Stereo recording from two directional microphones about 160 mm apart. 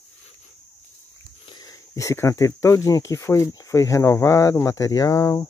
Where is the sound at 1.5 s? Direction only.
25° left (ahead or behind).